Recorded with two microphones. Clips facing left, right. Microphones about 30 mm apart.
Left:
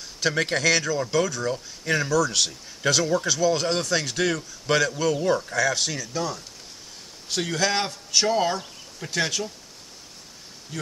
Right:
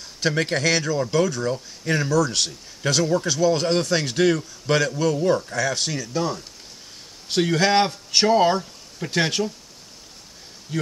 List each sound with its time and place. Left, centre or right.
0.3 s speech: centre
5.2 s speech: centre
5.6 s a man's voice: centre; by 9.4 s right
10.7 s speech: right